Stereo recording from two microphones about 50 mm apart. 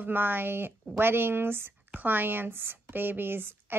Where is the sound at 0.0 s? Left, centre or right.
Right.